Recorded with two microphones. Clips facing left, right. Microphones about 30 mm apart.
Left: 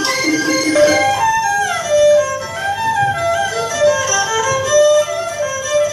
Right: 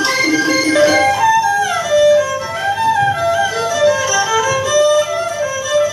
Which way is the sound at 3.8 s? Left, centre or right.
Centre.